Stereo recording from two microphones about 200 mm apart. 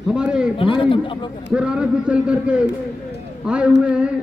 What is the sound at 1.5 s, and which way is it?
A man's voice, 5° right (ahead or behind).